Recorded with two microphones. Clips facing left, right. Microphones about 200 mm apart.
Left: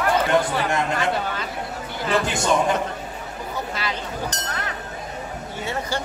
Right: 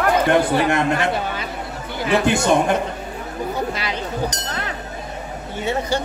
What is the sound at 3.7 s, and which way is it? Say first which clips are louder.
Speech: right 4 dB; 15° right (ahead or behind).